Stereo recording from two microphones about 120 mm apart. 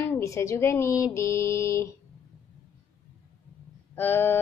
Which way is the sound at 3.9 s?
20° left (ahead or behind).